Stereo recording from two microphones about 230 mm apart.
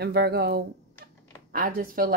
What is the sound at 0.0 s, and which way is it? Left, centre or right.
A woman's voice, right.